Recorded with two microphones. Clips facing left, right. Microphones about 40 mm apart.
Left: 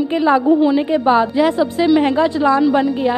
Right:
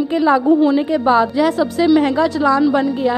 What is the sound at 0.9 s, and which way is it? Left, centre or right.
A woman's voice, left.